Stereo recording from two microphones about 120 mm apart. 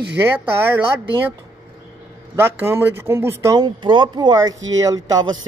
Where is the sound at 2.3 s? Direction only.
20° right (ahead or behind).